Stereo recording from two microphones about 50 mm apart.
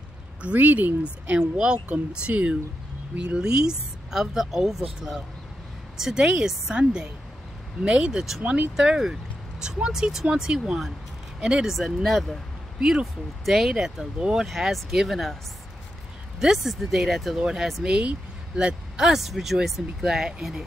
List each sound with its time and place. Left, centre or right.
0.6 s speech: right
1.6 s speech: right
8.4 s speech: right
8.7 s speech: centre
11.7 s speech: centre
16.3 s speech: centre
17.8 s speech: right
19.0 s speech: centre